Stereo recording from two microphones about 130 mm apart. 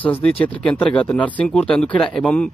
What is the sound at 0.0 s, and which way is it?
A man's voice, 10° left (ahead or behind).